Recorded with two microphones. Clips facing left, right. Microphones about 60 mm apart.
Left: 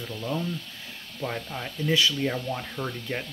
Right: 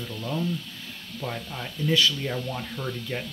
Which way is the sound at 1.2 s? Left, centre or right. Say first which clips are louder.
Left 2 dB; centre.